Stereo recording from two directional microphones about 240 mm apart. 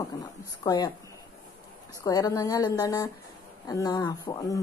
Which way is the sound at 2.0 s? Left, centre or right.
Centre.